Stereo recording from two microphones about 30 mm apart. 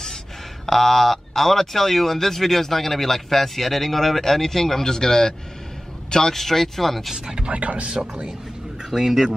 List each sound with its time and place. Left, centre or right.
0.7 s a man's voice: centre
6.3 s speech: centre
7.4 s speech: right
8.9 s speech: centre